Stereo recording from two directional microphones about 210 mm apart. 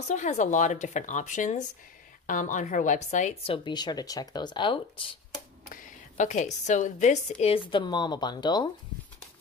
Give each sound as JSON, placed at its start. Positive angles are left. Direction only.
{"t": 0.1, "sound": "a woman's voice", "side_deg": 35}
{"t": 5.7, "sound": "a woman's voice", "side_deg": 40}